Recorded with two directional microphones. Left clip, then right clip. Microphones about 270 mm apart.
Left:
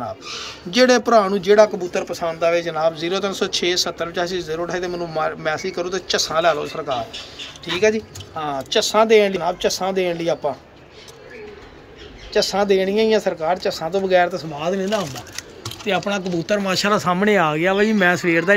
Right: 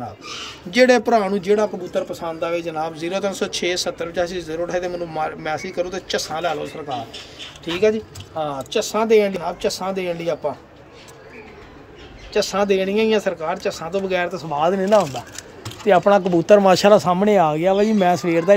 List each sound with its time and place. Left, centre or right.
0.7 s speech: centre
2.0 s speech: left
2.5 s speech: centre
8.7 s speech: centre
12.3 s speech: centre
14.6 s speech: centre